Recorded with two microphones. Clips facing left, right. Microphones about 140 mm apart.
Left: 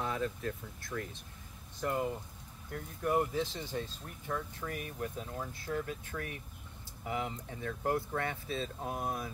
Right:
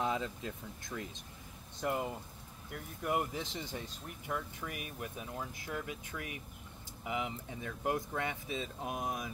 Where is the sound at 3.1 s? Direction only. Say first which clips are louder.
Left 4 dB; 15° right (ahead or behind).